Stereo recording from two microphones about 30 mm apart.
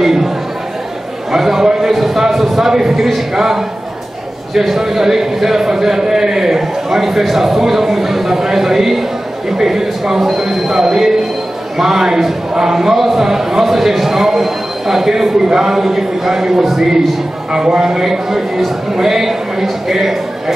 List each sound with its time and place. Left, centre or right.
0.0 s chatter: centre
1.3 s a sound: centre
3.3 s a man's voice: centre
17.6 s a man's voice: centre